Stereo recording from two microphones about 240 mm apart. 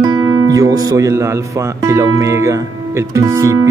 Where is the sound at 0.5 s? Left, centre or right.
Centre.